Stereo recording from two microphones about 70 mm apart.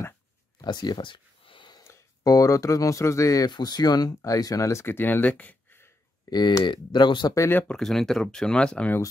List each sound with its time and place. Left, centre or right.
0.6 s speech: left
2.2 s speech: left
3.4 s speech: left
4.2 s speech: left
6.3 s speech: left
7.6 s speech: centre